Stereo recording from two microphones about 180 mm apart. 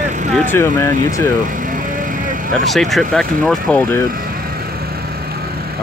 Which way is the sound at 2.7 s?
Centre (ahead or behind).